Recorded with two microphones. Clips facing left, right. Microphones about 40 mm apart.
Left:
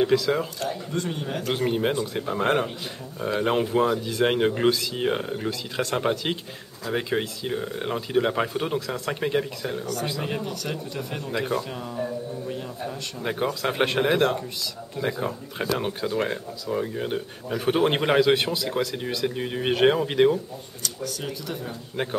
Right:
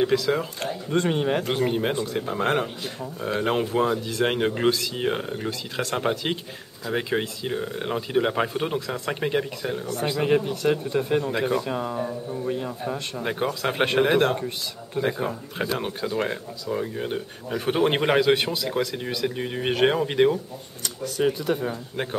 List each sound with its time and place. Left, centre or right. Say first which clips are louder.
0.0 s speech: even; centre
0.8 s speech: right 6 dB; right
1.5 s speech: even; centre
10.2 s speech: right 8 dB; right
11.7 s speech: right 6 dB; right
12.0 s a man's voice: right 1 dB; centre
13.2 s a man's voice: left 1 dB; centre
20.8 s speech: right 8 dB; right